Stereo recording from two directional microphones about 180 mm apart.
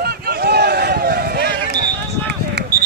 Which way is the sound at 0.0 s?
60° right (ahead or behind).